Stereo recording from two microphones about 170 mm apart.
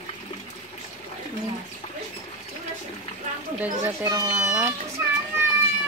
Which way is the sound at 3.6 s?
15° right (ahead or behind).